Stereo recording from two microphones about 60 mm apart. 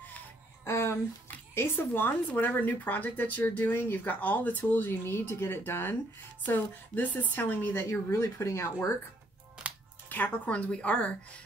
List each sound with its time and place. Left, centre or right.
0.7 s a sound: left
1.5 s a woman's voice: left
10.0 s a woman's voice: left